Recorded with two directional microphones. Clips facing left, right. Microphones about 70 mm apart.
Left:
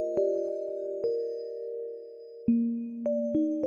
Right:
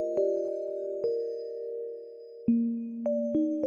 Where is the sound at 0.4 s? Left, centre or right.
Right.